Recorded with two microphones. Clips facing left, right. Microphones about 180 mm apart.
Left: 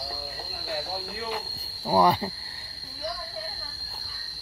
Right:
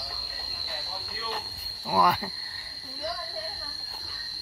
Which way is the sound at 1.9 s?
25° left (ahead or behind).